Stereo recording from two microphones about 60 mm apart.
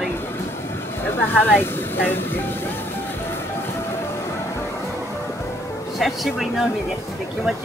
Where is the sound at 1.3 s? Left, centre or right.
Left.